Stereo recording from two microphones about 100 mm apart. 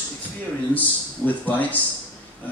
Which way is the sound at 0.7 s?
15° left (ahead or behind).